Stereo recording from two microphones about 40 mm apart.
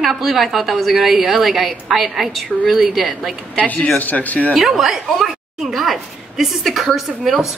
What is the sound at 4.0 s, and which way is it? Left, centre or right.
Speech, left.